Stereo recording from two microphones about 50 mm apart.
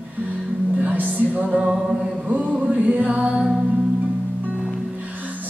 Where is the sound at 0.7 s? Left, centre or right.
Right.